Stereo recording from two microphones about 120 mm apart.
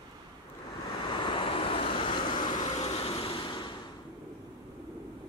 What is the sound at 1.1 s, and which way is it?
Vehicle, 40° left (ahead or behind).